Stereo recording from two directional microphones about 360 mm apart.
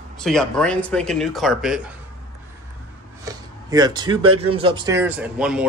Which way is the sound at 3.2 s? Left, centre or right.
Centre.